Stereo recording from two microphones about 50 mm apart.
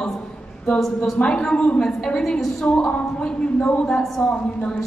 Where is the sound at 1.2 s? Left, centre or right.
Left.